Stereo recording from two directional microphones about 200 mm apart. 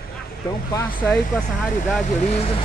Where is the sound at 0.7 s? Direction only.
10° left (ahead or behind).